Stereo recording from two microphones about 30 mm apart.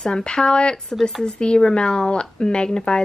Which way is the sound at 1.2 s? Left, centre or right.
Left.